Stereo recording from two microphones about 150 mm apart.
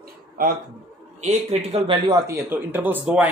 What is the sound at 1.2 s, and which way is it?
Speech, 50° right (ahead or behind).